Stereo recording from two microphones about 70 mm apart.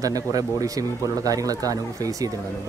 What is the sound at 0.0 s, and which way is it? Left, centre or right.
Speech, right.